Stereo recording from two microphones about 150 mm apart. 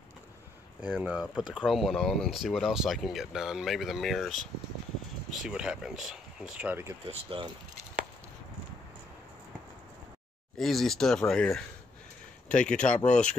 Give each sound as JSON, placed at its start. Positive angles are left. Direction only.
{"t": 0.8, "sound": "speech", "side_deg": -10}
{"t": 7.1, "sound": "speech", "side_deg": -35}
{"t": 10.6, "sound": "speech", "side_deg": 0}